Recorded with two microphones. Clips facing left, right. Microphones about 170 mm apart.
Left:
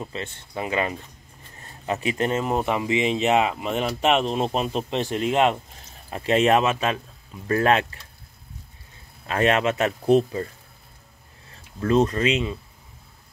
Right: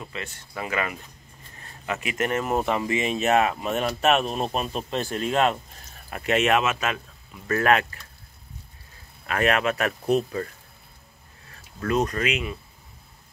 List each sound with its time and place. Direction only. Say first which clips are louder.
0.0 s speech: left 3 dB; 30° left (ahead or behind)
9.2 s speech: left 2 dB; 25° left (ahead or behind)
11.5 s speech: left 4 dB; 25° left (ahead or behind)